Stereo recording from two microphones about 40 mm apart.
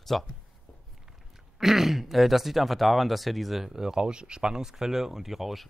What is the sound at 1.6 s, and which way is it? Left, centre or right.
Speech, centre.